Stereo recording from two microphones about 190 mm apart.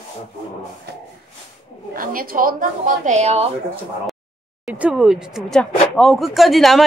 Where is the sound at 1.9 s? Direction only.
50° right (ahead or behind).